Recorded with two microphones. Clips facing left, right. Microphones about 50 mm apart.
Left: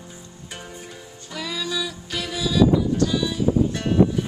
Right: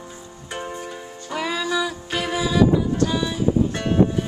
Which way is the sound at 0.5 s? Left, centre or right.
Right.